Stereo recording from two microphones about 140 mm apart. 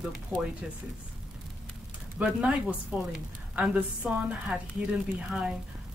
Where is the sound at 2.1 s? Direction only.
5° right (ahead or behind).